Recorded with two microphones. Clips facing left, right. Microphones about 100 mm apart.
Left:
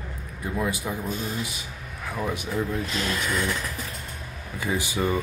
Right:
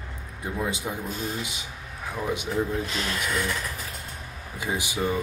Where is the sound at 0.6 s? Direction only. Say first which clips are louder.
Left 1 dB; 20° right (ahead or behind).